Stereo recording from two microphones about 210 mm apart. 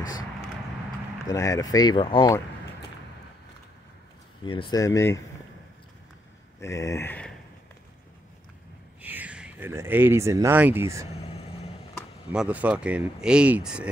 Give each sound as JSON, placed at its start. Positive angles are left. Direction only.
{"t": 1.2, "sound": "speech", "side_deg": 15}
{"t": 4.5, "sound": "speech", "side_deg": 20}
{"t": 6.6, "sound": "speech", "side_deg": 15}
{"t": 9.0, "sound": "speech", "side_deg": -5}
{"t": 12.3, "sound": "speech", "side_deg": -5}